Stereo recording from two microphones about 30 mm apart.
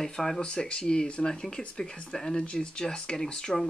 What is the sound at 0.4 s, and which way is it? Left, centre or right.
Speech, left.